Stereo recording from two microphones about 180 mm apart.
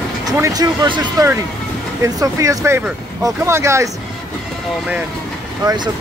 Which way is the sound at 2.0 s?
20° right (ahead or behind).